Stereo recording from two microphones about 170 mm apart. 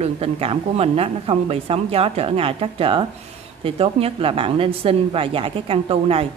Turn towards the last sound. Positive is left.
turn(degrees=-35)  # may be behind; listen again after turning